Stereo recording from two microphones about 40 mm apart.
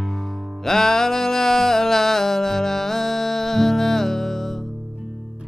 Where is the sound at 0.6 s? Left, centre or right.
Centre.